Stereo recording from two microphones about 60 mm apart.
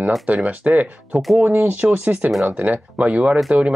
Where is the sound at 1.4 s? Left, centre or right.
Right.